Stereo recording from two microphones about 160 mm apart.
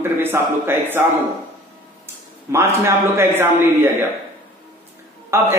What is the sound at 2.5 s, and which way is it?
Speech, 15° right (ahead or behind).